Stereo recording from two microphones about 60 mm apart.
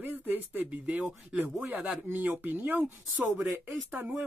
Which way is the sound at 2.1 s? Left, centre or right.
Right.